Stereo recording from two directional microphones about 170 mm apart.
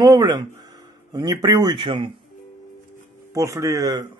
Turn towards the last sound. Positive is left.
turn(degrees=-20)  # may be behind; listen again after turning